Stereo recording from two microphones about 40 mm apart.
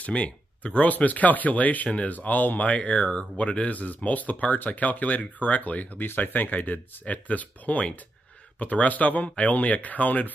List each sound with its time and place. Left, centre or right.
0.0 s speech: left
6.0 s speech: left